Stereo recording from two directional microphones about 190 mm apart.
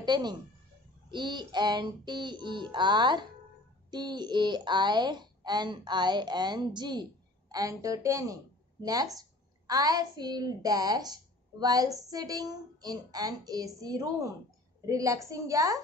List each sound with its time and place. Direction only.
0.0 s speech: 20° right (ahead or behind)